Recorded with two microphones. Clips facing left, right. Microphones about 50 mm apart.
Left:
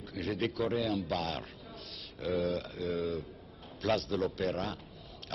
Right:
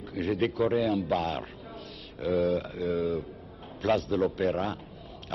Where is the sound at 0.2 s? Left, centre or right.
Centre.